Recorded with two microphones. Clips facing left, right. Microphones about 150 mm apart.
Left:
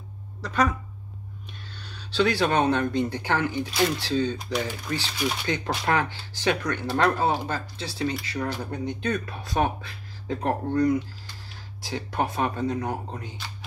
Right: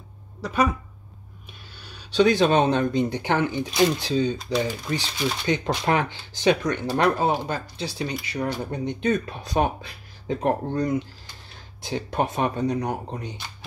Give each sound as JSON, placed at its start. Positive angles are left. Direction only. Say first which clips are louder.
{"t": 0.4, "sound": "speech", "louder": "right 2 dB", "side_deg": -10}
{"t": 1.9, "sound": "speech", "louder": "right 5 dB", "side_deg": -15}